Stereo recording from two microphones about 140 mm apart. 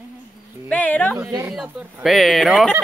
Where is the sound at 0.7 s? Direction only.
10° left (ahead or behind).